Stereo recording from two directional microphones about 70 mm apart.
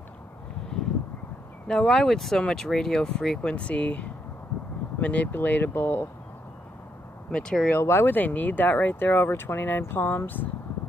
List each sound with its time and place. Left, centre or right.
1.7 s speech: centre; by 6.0 s left
7.2 s speech: centre
7.8 s speech: left